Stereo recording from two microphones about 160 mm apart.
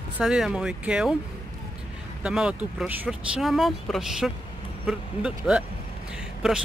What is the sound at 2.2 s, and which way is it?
Speech, 5° right (ahead or behind).